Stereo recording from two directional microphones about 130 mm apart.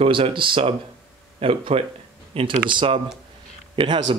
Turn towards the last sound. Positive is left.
turn(degrees=-35)  # may be behind; listen again after turning